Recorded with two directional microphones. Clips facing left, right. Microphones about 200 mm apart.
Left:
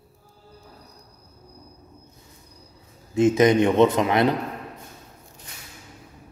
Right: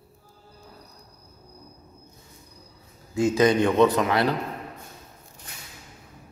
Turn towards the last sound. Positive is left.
turn(degrees=20)  # may be behind; listen again after turning